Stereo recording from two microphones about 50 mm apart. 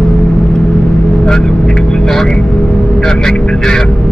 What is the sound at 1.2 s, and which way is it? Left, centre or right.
Vehicle, centre.